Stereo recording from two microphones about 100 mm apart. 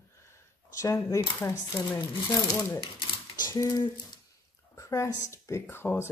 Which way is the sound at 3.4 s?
35° left (ahead or behind).